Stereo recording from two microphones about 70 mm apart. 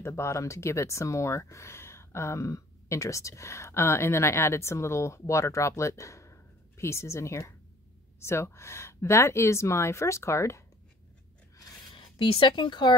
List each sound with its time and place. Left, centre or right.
0.0 s speech: left
12.4 s speech: left